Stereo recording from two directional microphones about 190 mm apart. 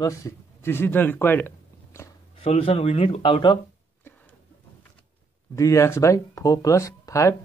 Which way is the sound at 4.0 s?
10° left (ahead or behind).